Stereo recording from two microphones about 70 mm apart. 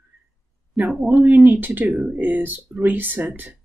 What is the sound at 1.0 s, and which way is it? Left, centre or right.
Speech, right.